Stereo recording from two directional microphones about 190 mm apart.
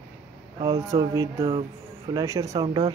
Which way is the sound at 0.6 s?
20° right (ahead or behind).